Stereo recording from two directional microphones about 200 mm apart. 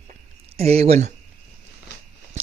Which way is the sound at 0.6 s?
30° right (ahead or behind).